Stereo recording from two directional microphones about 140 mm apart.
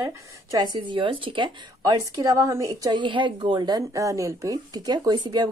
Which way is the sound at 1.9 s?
25° right (ahead or behind).